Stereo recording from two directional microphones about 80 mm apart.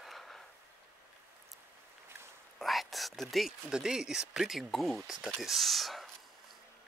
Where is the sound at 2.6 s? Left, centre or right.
Centre.